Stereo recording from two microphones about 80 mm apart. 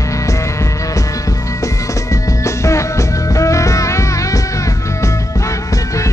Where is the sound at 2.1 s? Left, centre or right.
Left.